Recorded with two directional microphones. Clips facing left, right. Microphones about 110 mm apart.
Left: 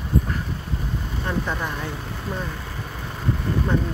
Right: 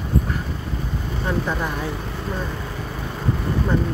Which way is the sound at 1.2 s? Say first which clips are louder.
Right 3 dB; 5° right (ahead or behind).